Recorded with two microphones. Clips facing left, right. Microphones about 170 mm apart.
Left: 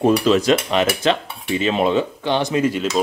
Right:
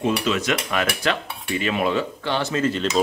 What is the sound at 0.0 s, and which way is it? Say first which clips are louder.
Cutlery: left 7 dB; 35° left (ahead or behind).